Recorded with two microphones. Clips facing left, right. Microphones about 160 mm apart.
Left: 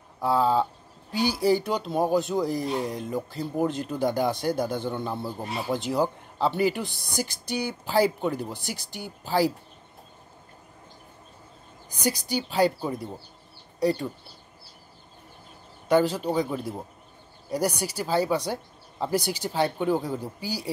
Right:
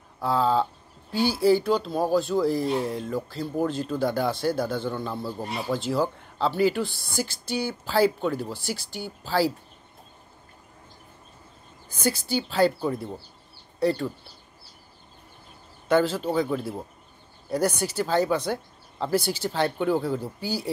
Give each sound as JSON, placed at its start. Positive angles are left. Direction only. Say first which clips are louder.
{"t": 0.2, "sound": "speech", "louder": "even", "side_deg": 10}
{"t": 11.9, "sound": "speech", "louder": "right 1 dB", "side_deg": 15}
{"t": 15.9, "sound": "speech", "louder": "even", "side_deg": 15}